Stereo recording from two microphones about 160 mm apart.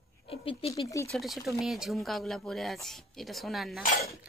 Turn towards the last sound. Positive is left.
turn(degrees=0)  # may be behind; listen again after turning